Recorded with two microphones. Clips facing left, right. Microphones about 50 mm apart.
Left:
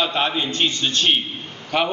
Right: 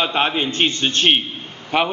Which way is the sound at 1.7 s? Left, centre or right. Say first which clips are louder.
Right 2 dB; centre.